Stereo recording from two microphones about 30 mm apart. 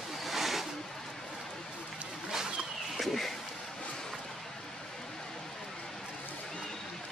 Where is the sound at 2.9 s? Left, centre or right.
Centre.